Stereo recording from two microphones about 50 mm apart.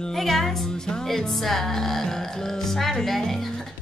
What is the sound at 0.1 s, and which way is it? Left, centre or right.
A woman's voice, centre.